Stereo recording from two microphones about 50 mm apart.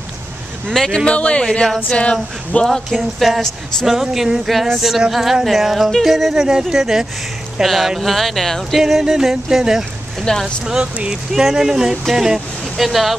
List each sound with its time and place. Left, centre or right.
0.7 s speech: centre
1.0 s speech: left
3.0 s speech: centre
8.8 s speech: centre
10.3 s speech: centre
10.6 s speech: centre